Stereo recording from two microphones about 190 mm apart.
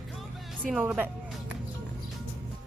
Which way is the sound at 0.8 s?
10° right (ahead or behind).